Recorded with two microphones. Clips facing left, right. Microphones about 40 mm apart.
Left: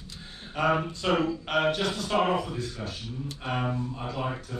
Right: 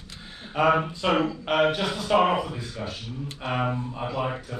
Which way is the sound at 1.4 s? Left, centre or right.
Centre.